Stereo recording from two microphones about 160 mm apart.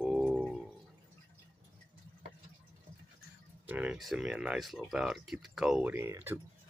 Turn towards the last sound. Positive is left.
turn(degrees=-15)  # may be behind; listen again after turning